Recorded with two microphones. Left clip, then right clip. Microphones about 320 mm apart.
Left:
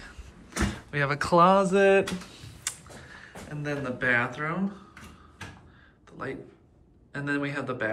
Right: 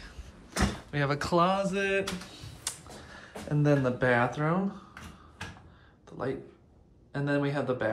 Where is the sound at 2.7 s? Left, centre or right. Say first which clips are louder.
Left 3 dB; centre.